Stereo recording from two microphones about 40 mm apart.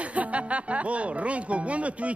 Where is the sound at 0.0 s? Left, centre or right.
Right.